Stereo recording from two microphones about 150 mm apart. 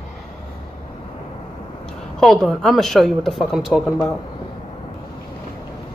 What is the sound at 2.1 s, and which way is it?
A woman's voice, centre (ahead or behind).